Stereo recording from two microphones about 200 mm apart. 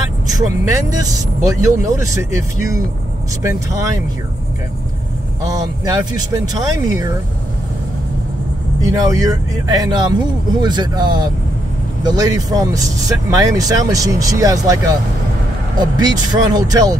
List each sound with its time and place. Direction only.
0.3 s speech: 20° right (ahead or behind)
3.4 s speech: 15° right (ahead or behind)
5.4 s speech: 20° right (ahead or behind)
8.8 s speech: 15° right (ahead or behind)